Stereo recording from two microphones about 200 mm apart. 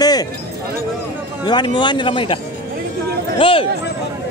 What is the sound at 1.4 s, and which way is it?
Speech, 20° left (ahead or behind).